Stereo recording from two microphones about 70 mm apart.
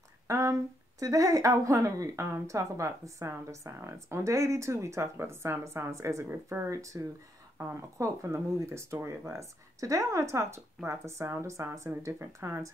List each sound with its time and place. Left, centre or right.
0.3 s a woman's voice: right
6.2 s speech: right
6.7 s a woman's voice: right